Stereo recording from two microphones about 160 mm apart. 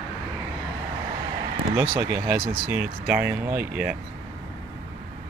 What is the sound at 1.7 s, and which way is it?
Speech, 15° right (ahead or behind).